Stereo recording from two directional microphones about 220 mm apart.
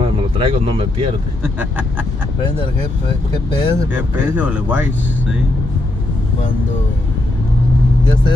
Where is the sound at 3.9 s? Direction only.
5° right (ahead or behind).